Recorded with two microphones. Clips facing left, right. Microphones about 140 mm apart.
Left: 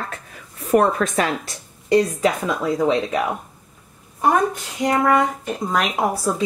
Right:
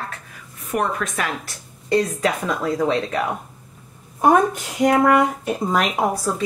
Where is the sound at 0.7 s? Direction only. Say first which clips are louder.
Left 6 dB; 35° left (ahead or behind).